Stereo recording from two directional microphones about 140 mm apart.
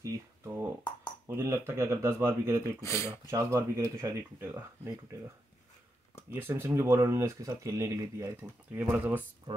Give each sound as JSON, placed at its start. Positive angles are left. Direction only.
{"t": 0.0, "sound": "a sound", "side_deg": -20}
{"t": 1.2, "sound": "speech", "side_deg": -20}
{"t": 2.8, "sound": "speech", "side_deg": 20}
{"t": 3.3, "sound": "speech", "side_deg": -20}
{"t": 6.3, "sound": "speech", "side_deg": -15}
{"t": 8.7, "sound": "speech", "side_deg": -10}
{"t": 9.5, "sound": "speech", "side_deg": -35}